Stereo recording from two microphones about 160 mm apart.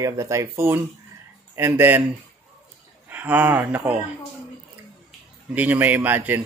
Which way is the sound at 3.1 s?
10° right (ahead or behind).